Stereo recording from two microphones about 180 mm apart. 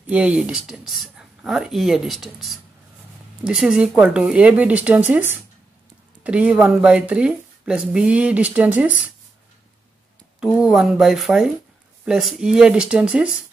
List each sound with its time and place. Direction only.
0.0 s speech: 5° right (ahead or behind)
10.4 s speech: centre (ahead or behind)